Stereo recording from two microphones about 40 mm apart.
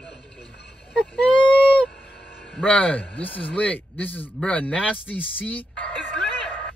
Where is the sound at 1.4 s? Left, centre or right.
Left.